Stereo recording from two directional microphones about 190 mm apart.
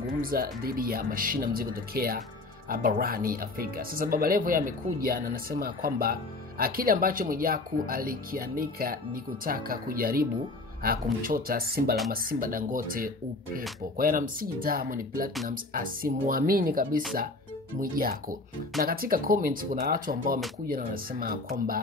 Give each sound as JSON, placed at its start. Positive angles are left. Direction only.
{"t": 0.2, "sound": "speech", "side_deg": -50}
{"t": 11.2, "sound": "speech", "side_deg": -50}